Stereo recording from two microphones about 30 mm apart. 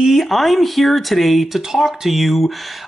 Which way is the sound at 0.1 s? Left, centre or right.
Centre.